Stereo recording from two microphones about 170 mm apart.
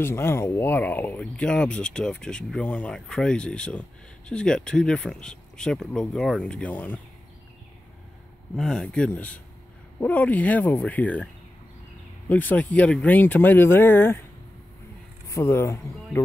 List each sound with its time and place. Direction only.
0.0 s speech: 15° left (ahead or behind)
8.5 s speech: centre (ahead or behind)
12.3 s speech: 10° left (ahead or behind)
15.2 s speech: 15° left (ahead or behind)